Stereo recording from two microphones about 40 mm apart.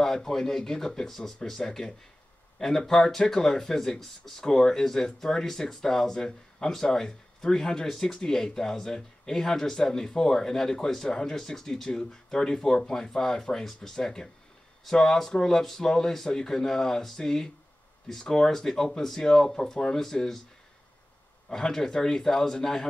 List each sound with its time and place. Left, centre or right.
0.0 s speech: centre
21.5 s speech: centre